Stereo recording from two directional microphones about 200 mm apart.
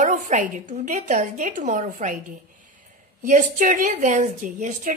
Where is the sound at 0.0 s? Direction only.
35° right (ahead or behind).